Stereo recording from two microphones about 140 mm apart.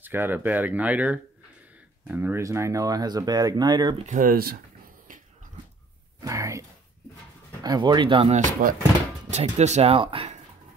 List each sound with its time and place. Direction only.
0.0 s speech: 15° right (ahead or behind); by 3.9 s 30° right (ahead or behind)
4.0 s speech: 70° right (ahead or behind); by 4.6 s 90° right
6.2 s a sound: 20° right (ahead or behind)
7.6 s speech: 30° right (ahead or behind)
8.3 s speech: 65° right (ahead or behind)
9.3 s speech: 50° right (ahead or behind)